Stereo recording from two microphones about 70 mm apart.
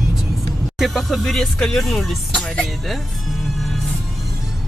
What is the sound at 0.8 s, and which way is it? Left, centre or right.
Speech, centre.